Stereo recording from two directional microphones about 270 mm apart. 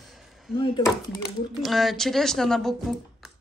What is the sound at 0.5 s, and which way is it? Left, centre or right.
Speech, centre.